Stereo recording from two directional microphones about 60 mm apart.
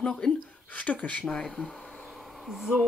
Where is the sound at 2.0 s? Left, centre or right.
Centre.